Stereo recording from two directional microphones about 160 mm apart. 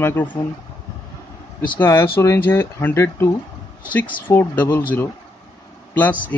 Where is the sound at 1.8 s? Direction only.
15° left (ahead or behind).